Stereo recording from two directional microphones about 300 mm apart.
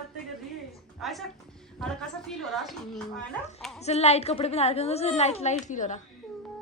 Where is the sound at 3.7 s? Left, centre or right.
Left.